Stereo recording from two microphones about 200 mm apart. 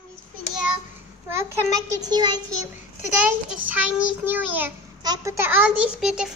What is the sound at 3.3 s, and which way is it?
A child's voice, 5° right (ahead or behind).